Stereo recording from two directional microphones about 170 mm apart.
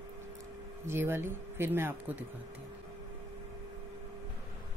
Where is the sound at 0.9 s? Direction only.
15° right (ahead or behind).